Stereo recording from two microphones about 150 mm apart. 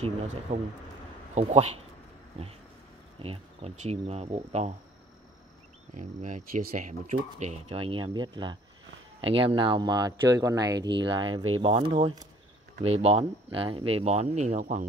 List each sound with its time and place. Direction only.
0.5 s speech: 50° right (ahead or behind)
3.2 s speech: 40° right (ahead or behind)
5.9 s speech: 60° right (ahead or behind); by 12.3 s 30° right (ahead or behind)
12.8 s speech: 45° right (ahead or behind)